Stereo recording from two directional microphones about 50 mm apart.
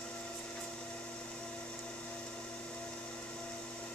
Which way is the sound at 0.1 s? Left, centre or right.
Centre.